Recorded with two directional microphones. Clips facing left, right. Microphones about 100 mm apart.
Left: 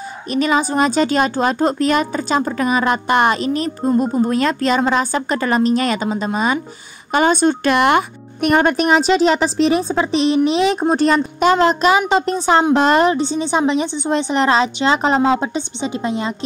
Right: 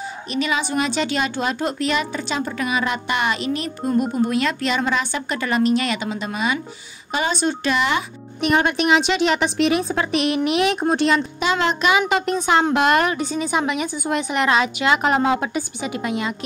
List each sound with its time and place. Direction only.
0.3 s speech: 40° left (ahead or behind)
7.1 s a woman's voice: 50° left (ahead or behind); by 16.3 s 30° left (ahead or behind)